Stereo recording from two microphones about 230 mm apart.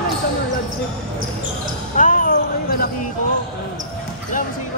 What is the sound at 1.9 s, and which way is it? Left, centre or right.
Speech, left.